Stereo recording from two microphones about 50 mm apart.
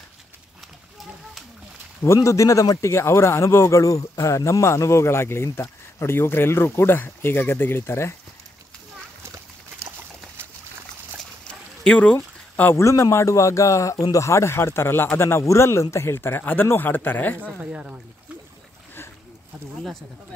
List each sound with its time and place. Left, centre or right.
2.0 s a man's voice: left
9.2 s splash: right
11.8 s a sound: left
12.7 s speech: left
17.6 s speech: right